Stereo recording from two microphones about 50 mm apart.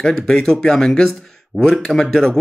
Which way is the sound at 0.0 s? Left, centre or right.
Centre.